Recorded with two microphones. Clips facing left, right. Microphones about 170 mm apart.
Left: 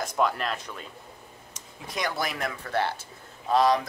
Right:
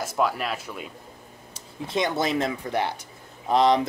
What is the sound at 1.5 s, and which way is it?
Speech, 25° right (ahead or behind).